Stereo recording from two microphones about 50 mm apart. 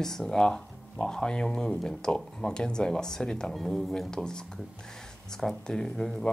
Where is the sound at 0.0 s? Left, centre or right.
Centre.